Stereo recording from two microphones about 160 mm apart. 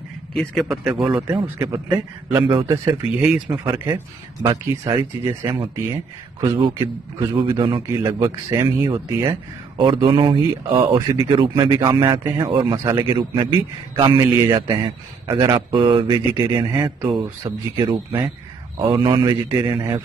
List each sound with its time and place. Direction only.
0.3 s a man's voice: centre (ahead or behind)
1.2 s a man's voice: 20° right (ahead or behind)
2.9 s speech: 5° right (ahead or behind)
3.7 s a man's voice: 20° right (ahead or behind)